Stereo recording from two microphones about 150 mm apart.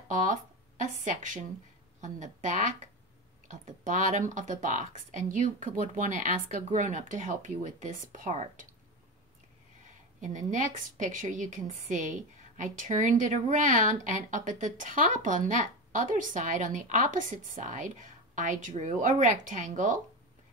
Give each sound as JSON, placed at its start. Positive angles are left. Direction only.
{"t": 0.1, "sound": "a woman's voice", "side_deg": -60}
{"t": 10.2, "sound": "a woman's voice", "side_deg": -55}